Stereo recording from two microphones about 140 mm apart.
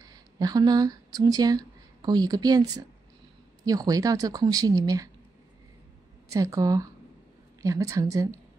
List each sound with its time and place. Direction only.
0.0 s speech: 30° right (ahead or behind)
6.3 s speech: 25° right (ahead or behind)